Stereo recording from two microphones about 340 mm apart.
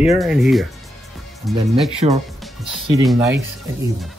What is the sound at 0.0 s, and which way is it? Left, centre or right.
Speech, centre.